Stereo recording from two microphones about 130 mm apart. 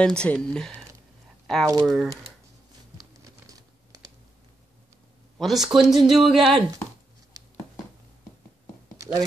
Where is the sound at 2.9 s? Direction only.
30° right (ahead or behind).